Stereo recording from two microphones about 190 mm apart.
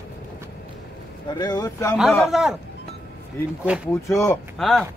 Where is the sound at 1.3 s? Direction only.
20° left (ahead or behind).